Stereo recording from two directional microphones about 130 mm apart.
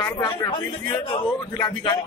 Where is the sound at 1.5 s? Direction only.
25° left (ahead or behind).